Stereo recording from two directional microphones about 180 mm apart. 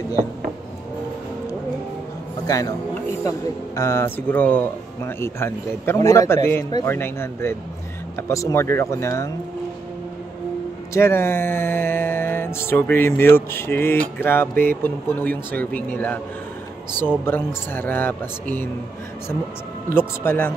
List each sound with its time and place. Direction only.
2.4 s a man's voice: 20° left (ahead or behind)
10.9 s speech: 15° left (ahead or behind)
14.5 s speech: 50° right (ahead or behind)
14.8 s speech: 10° left (ahead or behind)
17.2 s speech: 10° left (ahead or behind)
20.2 s speech: 10° left (ahead or behind)